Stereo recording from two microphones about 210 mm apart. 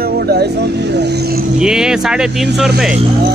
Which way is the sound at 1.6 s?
5° right (ahead or behind).